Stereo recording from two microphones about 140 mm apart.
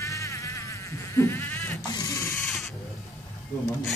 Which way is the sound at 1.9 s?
25° left (ahead or behind).